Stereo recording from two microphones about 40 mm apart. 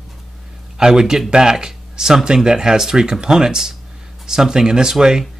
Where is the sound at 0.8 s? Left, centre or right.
Centre.